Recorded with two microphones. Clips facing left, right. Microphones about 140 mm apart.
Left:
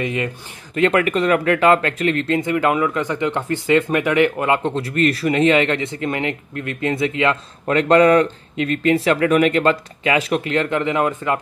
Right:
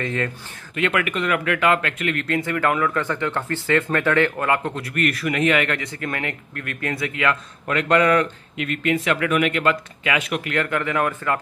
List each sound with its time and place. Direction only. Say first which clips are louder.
0.0 s speech: left 2 dB; 15° left (ahead or behind)
0.7 s speech: left 6 dB; 35° left (ahead or behind)